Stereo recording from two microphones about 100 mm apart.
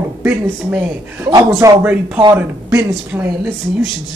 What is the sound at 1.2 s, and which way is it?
Speech, 35° right (ahead or behind).